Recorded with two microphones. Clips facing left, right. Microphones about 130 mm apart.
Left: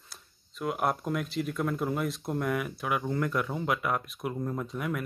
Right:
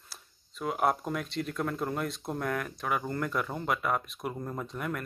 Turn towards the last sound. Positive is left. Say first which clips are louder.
# left 2 dB
turn(degrees=0)  # may be behind; listen again after turning